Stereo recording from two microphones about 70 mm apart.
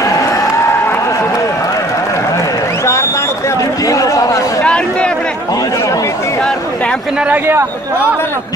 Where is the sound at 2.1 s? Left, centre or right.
Left.